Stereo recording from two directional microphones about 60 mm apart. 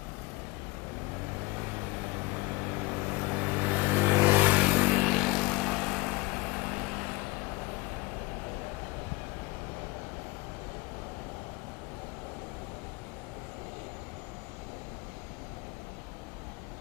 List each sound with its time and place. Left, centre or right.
2.3 s vehicle: centre
5.0 s vehicle: centre